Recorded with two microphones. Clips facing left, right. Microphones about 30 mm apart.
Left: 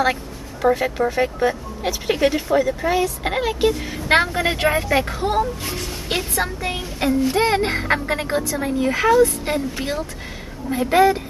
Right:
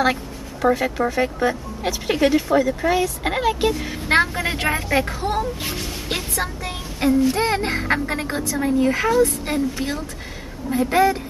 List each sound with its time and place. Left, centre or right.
0.0 s a woman's voice: centre